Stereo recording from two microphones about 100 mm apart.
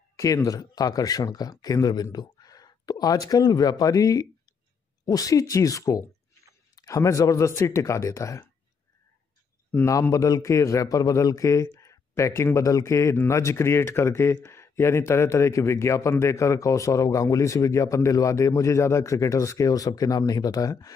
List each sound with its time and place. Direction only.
0.2 s a man's voice: 35° left (ahead or behind)
9.7 s a man's voice: 25° left (ahead or behind)
10.1 s a man's voice: 35° left (ahead or behind)